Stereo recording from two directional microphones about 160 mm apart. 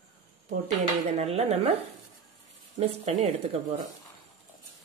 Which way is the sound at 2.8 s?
45° right (ahead or behind).